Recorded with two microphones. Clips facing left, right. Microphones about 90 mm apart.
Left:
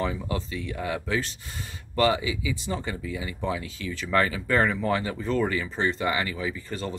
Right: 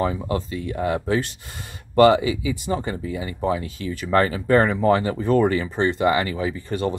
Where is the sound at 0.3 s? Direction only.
45° right (ahead or behind).